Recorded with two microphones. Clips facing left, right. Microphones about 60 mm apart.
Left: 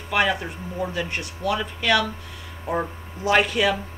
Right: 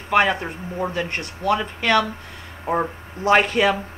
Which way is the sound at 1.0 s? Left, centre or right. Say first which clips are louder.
Right 2 dB; right.